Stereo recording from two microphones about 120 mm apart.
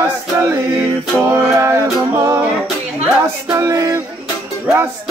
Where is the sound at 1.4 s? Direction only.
25° right (ahead or behind).